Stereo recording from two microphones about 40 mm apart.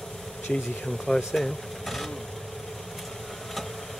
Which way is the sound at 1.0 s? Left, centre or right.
Centre.